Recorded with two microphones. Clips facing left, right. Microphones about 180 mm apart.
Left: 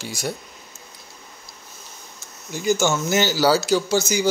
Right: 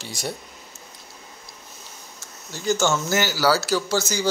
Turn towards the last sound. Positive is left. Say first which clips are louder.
# left 3 dB
turn(degrees=15)  # may be behind; listen again after turning